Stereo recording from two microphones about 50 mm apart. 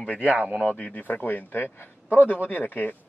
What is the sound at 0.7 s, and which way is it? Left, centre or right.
A man's voice, left.